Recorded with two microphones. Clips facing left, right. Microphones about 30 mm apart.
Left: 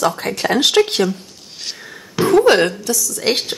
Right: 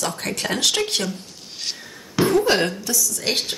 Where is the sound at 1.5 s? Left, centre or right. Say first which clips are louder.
Left 1 dB; centre.